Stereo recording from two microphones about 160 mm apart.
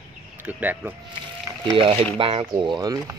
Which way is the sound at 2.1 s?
35° right (ahead or behind).